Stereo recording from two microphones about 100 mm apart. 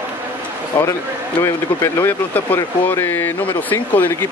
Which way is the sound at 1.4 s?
25° left (ahead or behind).